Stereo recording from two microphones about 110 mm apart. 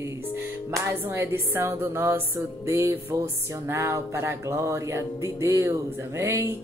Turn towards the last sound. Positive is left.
turn(degrees=-25)  # may be behind; listen again after turning